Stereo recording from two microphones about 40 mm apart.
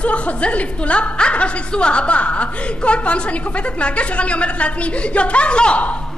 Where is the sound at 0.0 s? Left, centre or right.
Left.